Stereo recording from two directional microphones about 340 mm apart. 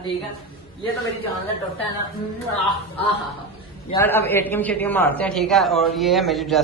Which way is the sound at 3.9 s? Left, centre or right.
Centre.